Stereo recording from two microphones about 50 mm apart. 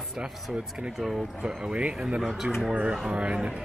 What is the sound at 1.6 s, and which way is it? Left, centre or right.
A man's voice, right.